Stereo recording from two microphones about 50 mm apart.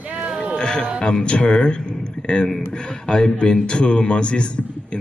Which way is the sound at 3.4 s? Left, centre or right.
Centre.